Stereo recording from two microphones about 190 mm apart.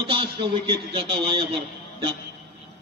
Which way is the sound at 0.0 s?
25° right (ahead or behind).